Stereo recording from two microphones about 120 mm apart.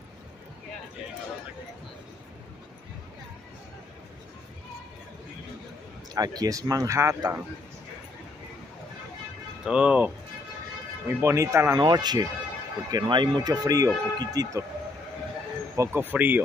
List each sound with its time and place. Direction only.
6.1 s speech: 30° right (ahead or behind)
9.7 s a man's voice: 10° right (ahead or behind)
11.1 s speech: 25° right (ahead or behind)
11.8 s speech: 35° right (ahead or behind)
15.7 s a man's voice: 20° right (ahead or behind)